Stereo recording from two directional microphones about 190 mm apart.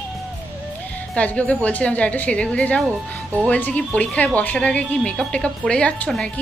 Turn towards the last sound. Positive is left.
turn(degrees=5)  # may be behind; listen again after turning